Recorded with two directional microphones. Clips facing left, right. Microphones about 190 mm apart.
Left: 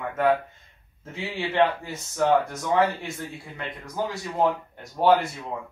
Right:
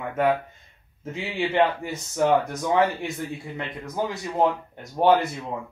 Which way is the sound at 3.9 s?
20° right (ahead or behind).